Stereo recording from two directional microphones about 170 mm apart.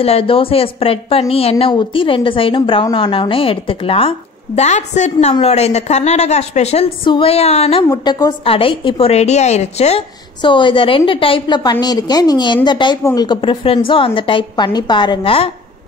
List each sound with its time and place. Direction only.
0.0 s a woman's voice: 35° left (ahead or behind)
7.9 s a woman's voice: 25° left (ahead or behind); by 10.0 s 40° left (ahead or behind)
10.4 s a woman's voice: 30° left (ahead or behind)